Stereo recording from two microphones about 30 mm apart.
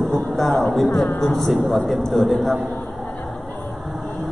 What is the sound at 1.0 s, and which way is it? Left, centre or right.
Speech, left.